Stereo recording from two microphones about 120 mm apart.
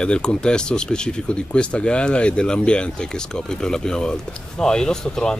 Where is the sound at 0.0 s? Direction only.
5° left (ahead or behind).